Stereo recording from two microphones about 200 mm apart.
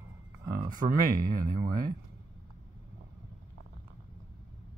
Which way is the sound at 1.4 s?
20° right (ahead or behind).